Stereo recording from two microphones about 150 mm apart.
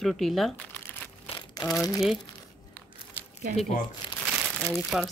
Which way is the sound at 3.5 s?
65° right (ahead or behind).